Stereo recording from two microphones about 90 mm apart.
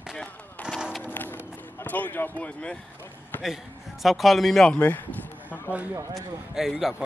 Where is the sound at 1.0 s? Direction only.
20° left (ahead or behind).